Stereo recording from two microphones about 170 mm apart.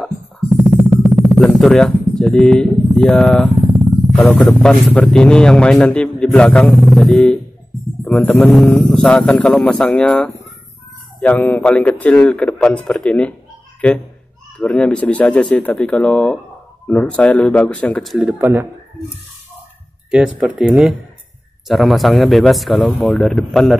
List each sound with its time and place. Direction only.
1.1 s a sound: centre (ahead or behind)
3.0 s a man's voice: centre (ahead or behind)
3.5 s a sound: 25° right (ahead or behind)
4.4 s a man's voice: centre (ahead or behind)
18.4 s speech: 15° right (ahead or behind)
20.1 s a man's voice: 5° right (ahead or behind)